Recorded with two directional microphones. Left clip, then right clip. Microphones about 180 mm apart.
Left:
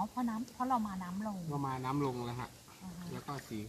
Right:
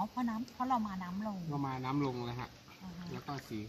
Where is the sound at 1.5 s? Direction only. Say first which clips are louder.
Left 1 dB; 35° right (ahead or behind).